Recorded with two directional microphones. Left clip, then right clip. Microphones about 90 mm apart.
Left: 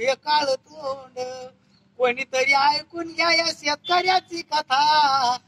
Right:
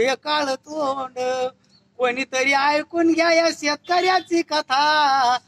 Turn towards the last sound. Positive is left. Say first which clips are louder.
# right 1 dB
turn(degrees=-45)  # may be behind; listen again after turning